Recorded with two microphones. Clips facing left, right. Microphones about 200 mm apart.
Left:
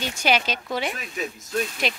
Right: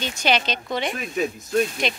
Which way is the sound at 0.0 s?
10° left (ahead or behind).